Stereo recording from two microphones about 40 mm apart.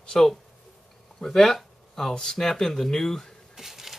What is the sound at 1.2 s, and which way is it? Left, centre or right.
Speech, centre.